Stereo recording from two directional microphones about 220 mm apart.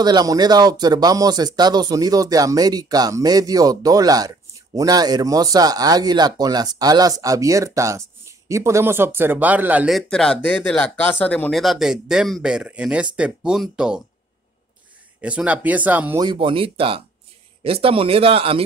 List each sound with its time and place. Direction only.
0.0 s speech: 20° right (ahead or behind)
15.1 s speech: 5° right (ahead or behind)
16.3 s speech: 25° right (ahead or behind)